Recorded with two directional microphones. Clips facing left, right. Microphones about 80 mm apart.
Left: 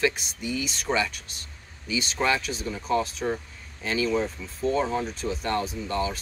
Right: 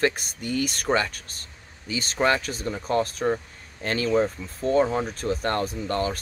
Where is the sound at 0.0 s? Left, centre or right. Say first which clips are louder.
Right 2 dB; right.